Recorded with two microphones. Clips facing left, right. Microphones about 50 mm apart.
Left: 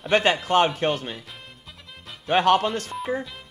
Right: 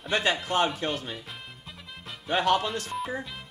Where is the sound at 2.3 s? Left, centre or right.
Left.